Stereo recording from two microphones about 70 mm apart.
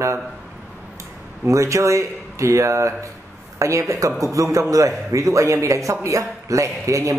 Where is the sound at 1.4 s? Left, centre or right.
Right.